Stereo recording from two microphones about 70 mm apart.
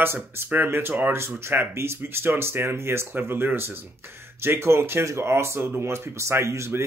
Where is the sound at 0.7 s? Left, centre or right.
Right.